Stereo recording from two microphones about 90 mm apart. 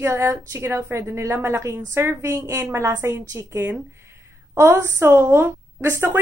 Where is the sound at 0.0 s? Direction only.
30° right (ahead or behind).